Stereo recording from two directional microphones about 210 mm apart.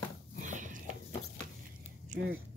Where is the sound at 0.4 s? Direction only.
35° right (ahead or behind).